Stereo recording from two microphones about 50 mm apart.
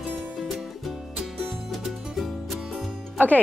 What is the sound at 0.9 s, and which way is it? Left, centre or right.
Music, centre.